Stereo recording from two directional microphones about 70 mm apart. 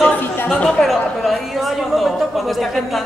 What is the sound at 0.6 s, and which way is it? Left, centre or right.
Speech, centre.